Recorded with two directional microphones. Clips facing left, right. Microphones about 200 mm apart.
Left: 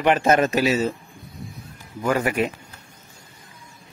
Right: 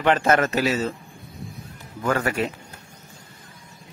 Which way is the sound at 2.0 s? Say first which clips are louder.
Left 2 dB; 15° left (ahead or behind).